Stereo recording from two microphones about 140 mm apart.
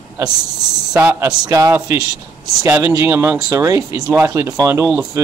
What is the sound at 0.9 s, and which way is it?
A man's voice, 20° right (ahead or behind).